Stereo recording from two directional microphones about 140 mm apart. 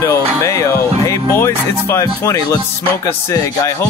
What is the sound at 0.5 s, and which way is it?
Music, 20° left (ahead or behind).